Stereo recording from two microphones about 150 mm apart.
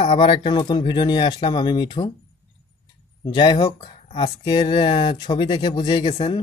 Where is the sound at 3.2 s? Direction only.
30° left (ahead or behind).